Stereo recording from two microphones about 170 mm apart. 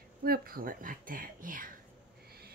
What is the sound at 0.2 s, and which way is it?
Speech, 60° right (ahead or behind).